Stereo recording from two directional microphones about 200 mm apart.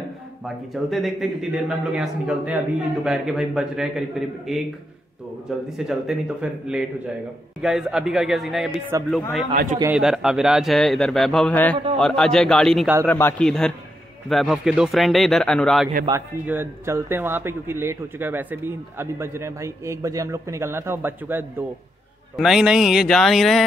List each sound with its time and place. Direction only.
0.7 s a man's voice: centre (ahead or behind)
5.8 s a man's voice: centre (ahead or behind)
9.5 s a man's voice: 40° right (ahead or behind)
9.9 s a man's voice: 5° right (ahead or behind)
16.1 s a man's voice: 10° right (ahead or behind)